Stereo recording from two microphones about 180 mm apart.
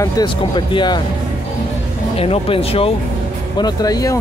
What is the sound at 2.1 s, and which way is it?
Speech, 35° left (ahead or behind).